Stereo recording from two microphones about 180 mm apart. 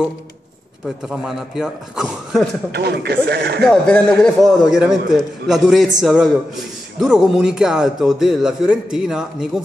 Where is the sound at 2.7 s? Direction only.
65° right (ahead or behind).